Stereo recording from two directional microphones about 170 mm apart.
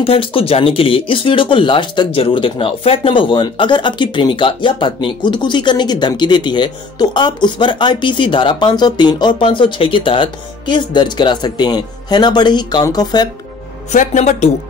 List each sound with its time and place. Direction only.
0.0 s speech: 35° left (ahead or behind)
13.9 s speech: 45° left (ahead or behind)